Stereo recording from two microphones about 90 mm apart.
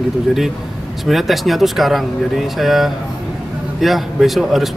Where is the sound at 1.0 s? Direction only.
Centre (ahead or behind).